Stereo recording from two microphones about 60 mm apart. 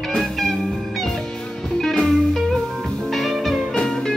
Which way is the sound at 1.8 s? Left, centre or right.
Centre.